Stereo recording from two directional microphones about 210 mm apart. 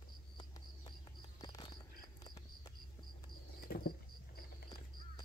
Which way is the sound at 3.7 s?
45° left (ahead or behind).